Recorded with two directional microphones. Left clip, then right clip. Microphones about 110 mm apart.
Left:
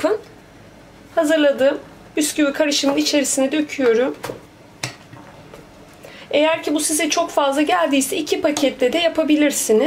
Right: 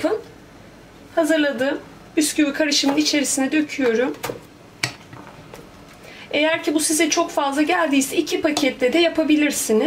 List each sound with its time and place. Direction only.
1.1 s a woman's voice: 30° left (ahead or behind)
6.3 s a woman's voice: 25° left (ahead or behind)